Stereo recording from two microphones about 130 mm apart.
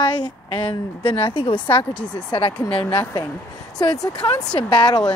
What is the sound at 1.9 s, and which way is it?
Speech, 10° left (ahead or behind).